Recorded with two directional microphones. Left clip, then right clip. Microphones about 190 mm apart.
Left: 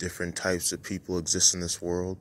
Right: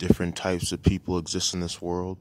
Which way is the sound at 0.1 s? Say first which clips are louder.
Right 6 dB; 20° right (ahead or behind).